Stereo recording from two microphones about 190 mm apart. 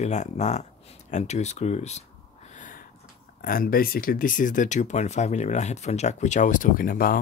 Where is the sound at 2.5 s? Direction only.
40° left (ahead or behind).